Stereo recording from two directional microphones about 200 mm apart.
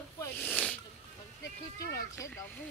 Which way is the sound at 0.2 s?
5° left (ahead or behind).